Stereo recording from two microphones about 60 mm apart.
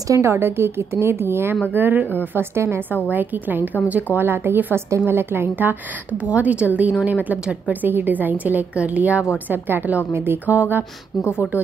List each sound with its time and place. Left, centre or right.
0.1 s a woman's voice: right
2.3 s a woman's voice: right
3.1 s a woman's voice: right
6.2 s a woman's voice: right
10.1 s a woman's voice: right
10.4 s a woman's voice: right
11.1 s speech: left